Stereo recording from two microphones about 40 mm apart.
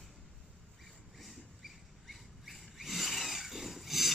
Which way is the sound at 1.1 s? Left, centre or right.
Centre.